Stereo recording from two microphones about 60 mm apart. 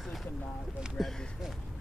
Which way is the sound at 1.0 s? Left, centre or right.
Centre.